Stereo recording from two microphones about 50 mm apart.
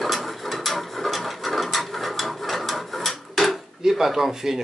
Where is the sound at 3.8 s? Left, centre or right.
Centre.